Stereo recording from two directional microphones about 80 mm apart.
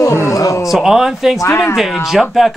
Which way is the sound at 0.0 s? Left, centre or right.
Left.